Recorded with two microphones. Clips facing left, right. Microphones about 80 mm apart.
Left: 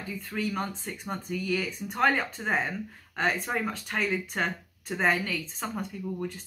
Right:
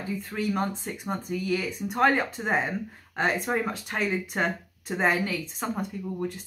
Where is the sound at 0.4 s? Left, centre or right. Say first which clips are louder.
Right 3 dB; centre.